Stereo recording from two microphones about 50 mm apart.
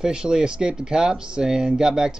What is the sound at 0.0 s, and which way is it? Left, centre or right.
Speech, centre.